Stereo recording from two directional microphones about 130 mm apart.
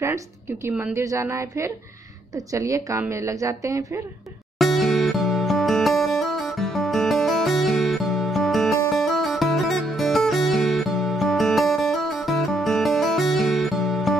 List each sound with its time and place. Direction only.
0.0 s a woman's voice: 20° right (ahead or behind)
4.6 s music: centre (ahead or behind)